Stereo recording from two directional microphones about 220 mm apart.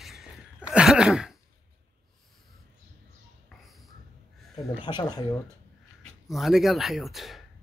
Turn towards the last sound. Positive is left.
turn(degrees=0)  # may be behind; listen again after turning